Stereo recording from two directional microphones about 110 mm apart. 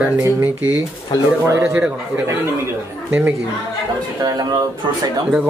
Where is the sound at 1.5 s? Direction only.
25° right (ahead or behind).